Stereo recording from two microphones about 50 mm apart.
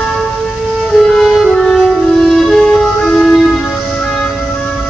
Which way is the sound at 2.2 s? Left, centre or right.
Centre.